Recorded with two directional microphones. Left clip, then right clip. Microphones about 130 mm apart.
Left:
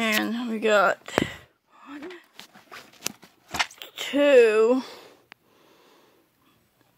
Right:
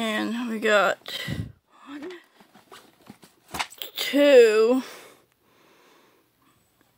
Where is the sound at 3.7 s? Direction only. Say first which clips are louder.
Right 2 dB; 25° right (ahead or behind).